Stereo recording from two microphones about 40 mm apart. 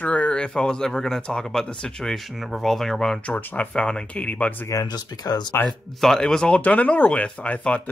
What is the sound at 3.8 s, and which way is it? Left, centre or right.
Speech, left.